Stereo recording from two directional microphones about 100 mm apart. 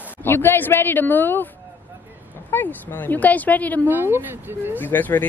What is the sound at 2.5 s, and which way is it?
Speech, 20° left (ahead or behind).